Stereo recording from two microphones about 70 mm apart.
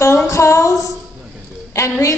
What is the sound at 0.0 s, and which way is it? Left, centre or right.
Female singing, left.